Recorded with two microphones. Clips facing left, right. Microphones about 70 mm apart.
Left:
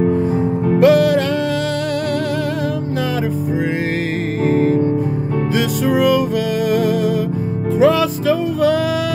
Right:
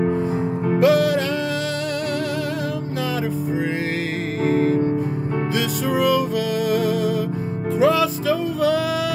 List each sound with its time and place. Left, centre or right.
0.7 s music: left
4.5 s music: left
6.7 s music: left